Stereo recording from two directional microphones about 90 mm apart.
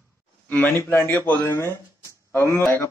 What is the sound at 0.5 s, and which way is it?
Speech, 20° left (ahead or behind).